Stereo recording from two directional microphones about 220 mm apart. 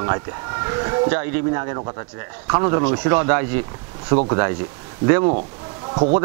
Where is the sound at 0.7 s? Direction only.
20° right (ahead or behind).